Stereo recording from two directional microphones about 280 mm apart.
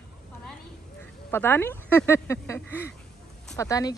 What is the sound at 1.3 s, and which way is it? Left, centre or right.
Speech, centre.